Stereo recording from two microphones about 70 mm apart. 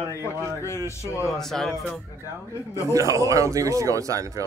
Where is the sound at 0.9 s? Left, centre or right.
Left.